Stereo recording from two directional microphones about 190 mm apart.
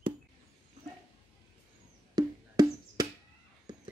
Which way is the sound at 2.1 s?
20° right (ahead or behind).